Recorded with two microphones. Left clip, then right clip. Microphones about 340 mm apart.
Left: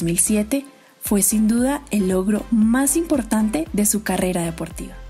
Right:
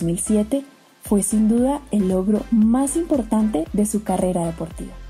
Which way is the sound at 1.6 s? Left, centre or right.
Left.